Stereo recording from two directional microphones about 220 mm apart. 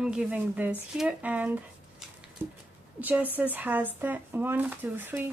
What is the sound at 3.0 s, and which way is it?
Speech, 5° right (ahead or behind).